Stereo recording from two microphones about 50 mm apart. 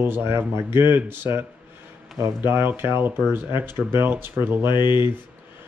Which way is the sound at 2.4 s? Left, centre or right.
Right.